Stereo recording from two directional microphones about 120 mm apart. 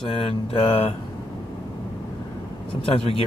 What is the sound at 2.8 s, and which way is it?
Speech, 50° left (ahead or behind).